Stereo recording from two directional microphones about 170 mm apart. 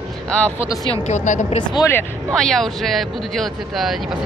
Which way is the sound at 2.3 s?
5° left (ahead or behind).